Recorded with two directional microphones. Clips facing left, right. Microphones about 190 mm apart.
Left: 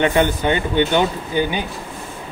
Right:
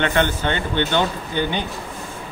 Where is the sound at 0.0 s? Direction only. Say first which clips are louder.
Left 3 dB; 10° left (ahead or behind).